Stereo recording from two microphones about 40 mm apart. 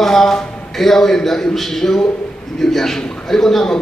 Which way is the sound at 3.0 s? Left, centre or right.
Left.